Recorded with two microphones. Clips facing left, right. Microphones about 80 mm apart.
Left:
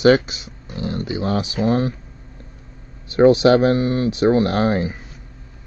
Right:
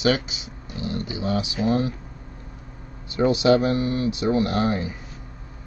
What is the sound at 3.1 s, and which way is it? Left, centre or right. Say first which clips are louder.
Speech: left 6 dB; left.